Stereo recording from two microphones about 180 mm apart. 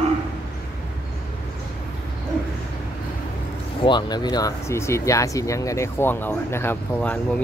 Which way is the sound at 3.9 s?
25° left (ahead or behind).